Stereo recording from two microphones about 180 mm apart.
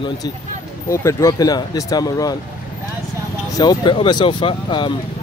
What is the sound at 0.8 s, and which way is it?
Speech, 15° left (ahead or behind).